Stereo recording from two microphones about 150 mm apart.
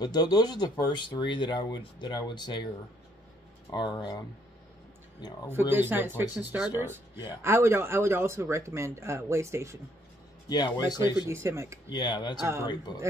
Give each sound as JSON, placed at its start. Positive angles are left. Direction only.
{"t": 0.0, "sound": "speech", "side_deg": 25}
{"t": 3.7, "sound": "speech", "side_deg": 30}
{"t": 5.5, "sound": "a man's voice", "side_deg": -15}
{"t": 10.5, "sound": "speech", "side_deg": 30}
{"t": 11.2, "sound": "a man's voice", "side_deg": -20}
{"t": 11.9, "sound": "speech", "side_deg": 30}